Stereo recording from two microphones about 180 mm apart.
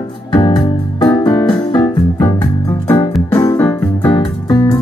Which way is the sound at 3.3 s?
15° left (ahead or behind).